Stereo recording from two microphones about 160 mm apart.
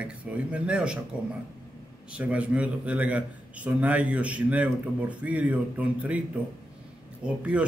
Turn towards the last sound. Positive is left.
turn(degrees=-10)  # may be behind; listen again after turning